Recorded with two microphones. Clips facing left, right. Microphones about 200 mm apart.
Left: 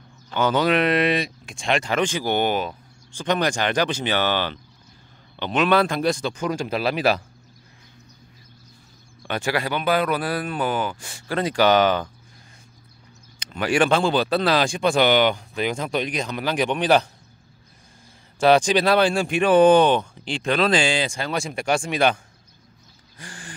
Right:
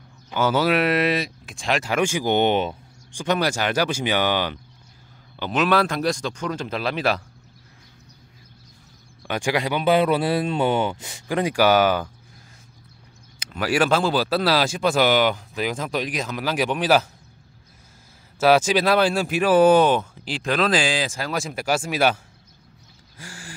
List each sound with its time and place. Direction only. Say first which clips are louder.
0.3 s speech: even; 10° right (ahead or behind); by 2.7 s 25° right (ahead or behind)
2.7 s speech: right 3 dB; 10° right (ahead or behind); by 7.2 s 5° left (ahead or behind)
9.3 s speech: right 1 dB; 15° right (ahead or behind)
9.8 s speech: right 5 dB; 25° right (ahead or behind); by 12.1 s 10° right (ahead or behind)
13.4 s speech: left 1 dB; 5° right (ahead or behind)
18.4 s speech: left 1 dB; 5° right (ahead or behind)
23.1 s a sound: even; 5° right (ahead or behind)